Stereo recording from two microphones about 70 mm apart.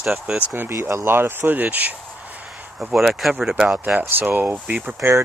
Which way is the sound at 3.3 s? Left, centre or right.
Centre.